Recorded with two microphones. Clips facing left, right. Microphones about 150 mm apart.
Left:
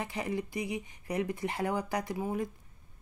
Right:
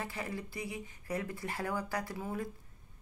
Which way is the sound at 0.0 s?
20° left (ahead or behind).